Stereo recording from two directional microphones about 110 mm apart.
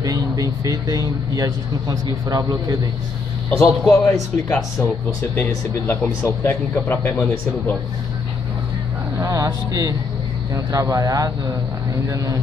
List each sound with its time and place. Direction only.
0.0 s a man's voice: 35° right (ahead or behind)
3.4 s a man's voice: 5° left (ahead or behind)
5.9 s speech: 20° left (ahead or behind)
9.2 s a man's voice: 30° right (ahead or behind)